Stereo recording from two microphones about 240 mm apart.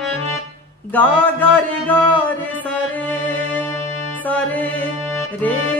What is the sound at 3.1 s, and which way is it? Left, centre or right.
Music, centre.